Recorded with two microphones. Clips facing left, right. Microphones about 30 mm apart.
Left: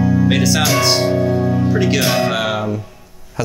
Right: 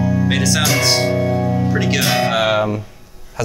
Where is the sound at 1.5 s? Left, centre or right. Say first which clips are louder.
Left 2 dB; centre.